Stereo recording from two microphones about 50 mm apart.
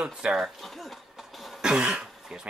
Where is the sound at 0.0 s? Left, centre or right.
Centre.